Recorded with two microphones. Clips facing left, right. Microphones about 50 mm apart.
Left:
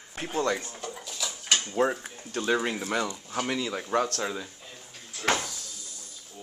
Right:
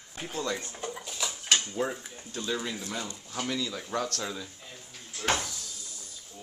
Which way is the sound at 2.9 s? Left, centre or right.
Left.